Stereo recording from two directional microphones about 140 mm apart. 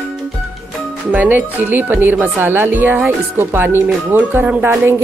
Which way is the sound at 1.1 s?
10° right (ahead or behind).